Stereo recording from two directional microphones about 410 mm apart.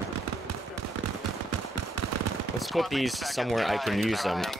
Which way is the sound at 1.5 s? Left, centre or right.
Right.